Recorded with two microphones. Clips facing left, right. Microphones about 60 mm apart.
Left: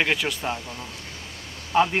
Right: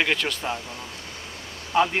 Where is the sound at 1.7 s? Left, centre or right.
Centre.